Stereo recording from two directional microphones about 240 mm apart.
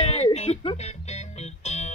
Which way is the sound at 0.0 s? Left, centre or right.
Left.